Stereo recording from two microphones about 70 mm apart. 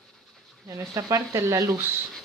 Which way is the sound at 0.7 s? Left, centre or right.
Right.